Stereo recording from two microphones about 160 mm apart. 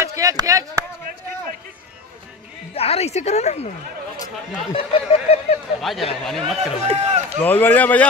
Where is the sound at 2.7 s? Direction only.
40° left (ahead or behind).